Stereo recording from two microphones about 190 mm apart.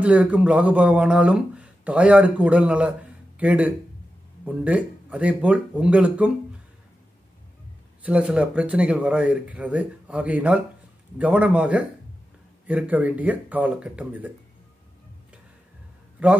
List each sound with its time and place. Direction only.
0.0 s speech: 5° right (ahead or behind)
8.0 s speech: 5° right (ahead or behind)
16.2 s a man's voice: 5° right (ahead or behind)